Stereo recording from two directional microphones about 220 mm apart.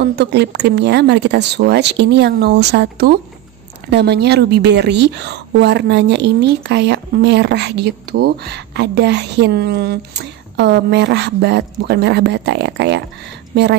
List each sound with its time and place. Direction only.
0.0 s a woman's voice: 50° right (ahead or behind)